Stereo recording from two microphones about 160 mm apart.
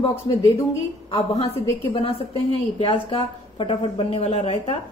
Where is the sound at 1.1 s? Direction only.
25° left (ahead or behind).